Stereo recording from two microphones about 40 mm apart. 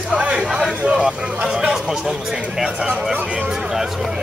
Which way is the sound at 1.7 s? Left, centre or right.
Centre.